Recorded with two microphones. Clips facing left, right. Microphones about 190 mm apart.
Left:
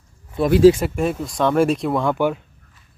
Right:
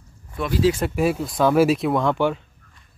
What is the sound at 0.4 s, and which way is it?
Speech, 30° left (ahead or behind).